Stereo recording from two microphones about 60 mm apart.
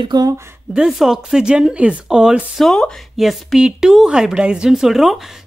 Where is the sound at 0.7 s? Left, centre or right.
Centre.